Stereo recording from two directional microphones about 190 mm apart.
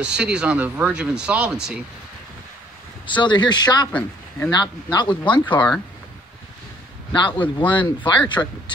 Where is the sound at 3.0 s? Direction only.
25° left (ahead or behind).